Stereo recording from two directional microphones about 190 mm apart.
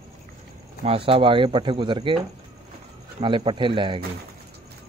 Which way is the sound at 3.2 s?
25° right (ahead or behind).